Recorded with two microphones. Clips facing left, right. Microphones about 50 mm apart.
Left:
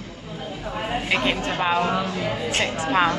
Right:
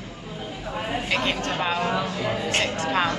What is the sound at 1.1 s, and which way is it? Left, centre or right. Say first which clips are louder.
Speech: left 3 dB; centre.